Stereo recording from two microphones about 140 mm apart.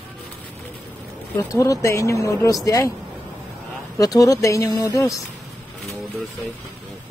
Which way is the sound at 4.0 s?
25° left (ahead or behind).